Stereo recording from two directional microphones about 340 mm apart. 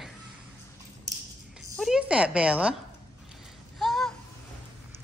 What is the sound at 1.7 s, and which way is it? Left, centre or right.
Speech, centre.